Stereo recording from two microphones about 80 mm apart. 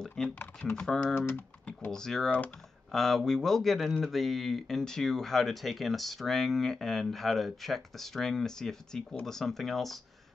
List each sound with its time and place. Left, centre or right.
0.3 s speech: centre
0.7 s speech: centre
1.0 s speech: left
1.9 s a man's voice: centre